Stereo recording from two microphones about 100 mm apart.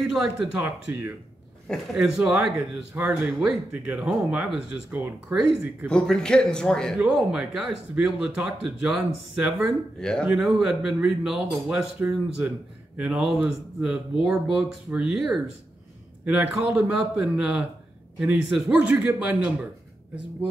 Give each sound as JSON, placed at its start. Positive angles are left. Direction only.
{"t": 0.1, "sound": "speech", "side_deg": -5}
{"t": 2.0, "sound": "speech", "side_deg": -5}
{"t": 5.9, "sound": "a man's voice", "side_deg": 10}
{"t": 7.0, "sound": "speech", "side_deg": -5}
{"t": 9.9, "sound": "a man's voice", "side_deg": 5}
{"t": 10.3, "sound": "speech", "side_deg": -5}